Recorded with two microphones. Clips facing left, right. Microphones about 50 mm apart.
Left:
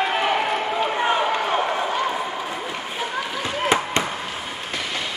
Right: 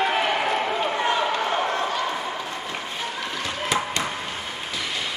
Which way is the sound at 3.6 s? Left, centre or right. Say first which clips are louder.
Left 5 dB; left.